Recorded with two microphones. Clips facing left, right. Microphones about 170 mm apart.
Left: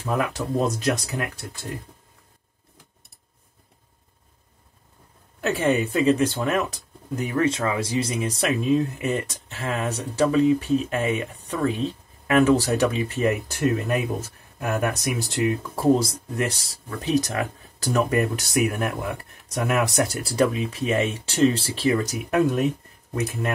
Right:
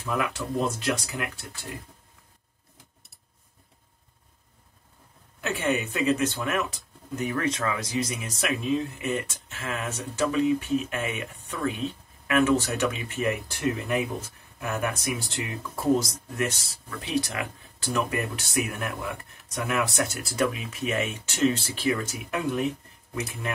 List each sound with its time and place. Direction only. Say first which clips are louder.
0.0 s speech: left 4 dB; 35° left (ahead or behind)
5.4 s speech: left 5 dB; 35° left (ahead or behind)